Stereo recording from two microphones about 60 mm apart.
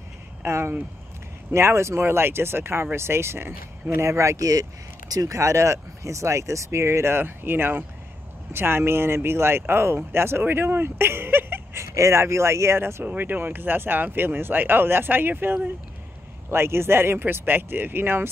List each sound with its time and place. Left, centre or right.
0.4 s speech: right
11.8 s speech: right
13.1 s speech: right